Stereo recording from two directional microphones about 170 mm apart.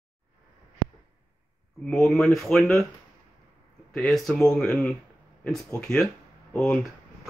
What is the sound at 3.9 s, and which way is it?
Speech, 5° left (ahead or behind).